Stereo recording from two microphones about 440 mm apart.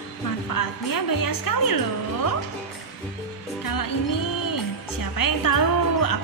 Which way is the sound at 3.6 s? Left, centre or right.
Left.